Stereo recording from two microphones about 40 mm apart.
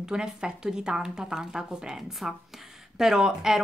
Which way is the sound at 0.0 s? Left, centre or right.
Centre.